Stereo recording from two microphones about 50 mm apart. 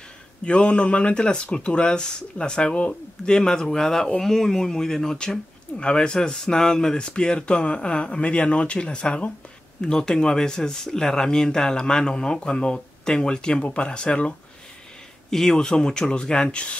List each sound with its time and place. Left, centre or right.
0.5 s speech: left